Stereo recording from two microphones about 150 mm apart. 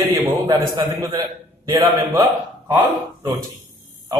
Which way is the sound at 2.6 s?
15° right (ahead or behind).